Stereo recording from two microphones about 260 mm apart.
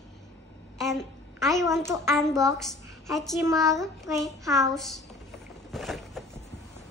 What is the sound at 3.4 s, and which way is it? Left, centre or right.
Speech, centre.